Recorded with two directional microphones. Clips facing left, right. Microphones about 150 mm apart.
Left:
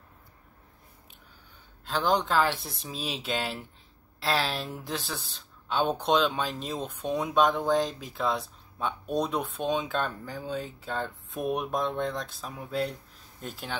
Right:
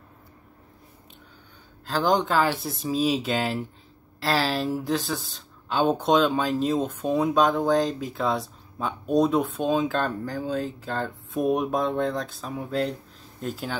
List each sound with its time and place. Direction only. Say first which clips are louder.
1.9 s speech: right 4 dB; centre (ahead or behind)